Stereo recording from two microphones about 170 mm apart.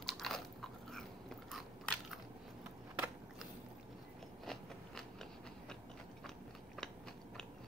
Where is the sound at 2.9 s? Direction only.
10° right (ahead or behind).